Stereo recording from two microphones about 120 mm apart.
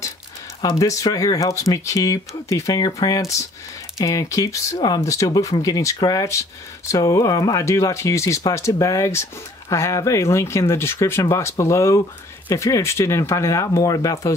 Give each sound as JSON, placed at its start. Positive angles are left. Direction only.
{"t": 0.6, "sound": "speech", "side_deg": 30}